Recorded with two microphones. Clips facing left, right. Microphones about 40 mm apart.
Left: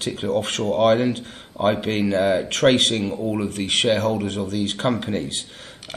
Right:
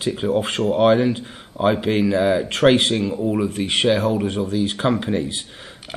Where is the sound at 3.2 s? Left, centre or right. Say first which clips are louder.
Right 3 dB; centre.